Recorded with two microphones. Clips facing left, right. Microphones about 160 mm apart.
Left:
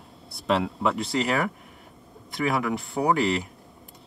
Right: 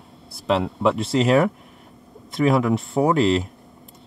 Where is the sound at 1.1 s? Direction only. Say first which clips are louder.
Right 8 dB; 25° right (ahead or behind).